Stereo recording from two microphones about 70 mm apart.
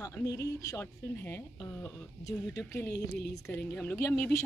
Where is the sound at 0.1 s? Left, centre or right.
Left.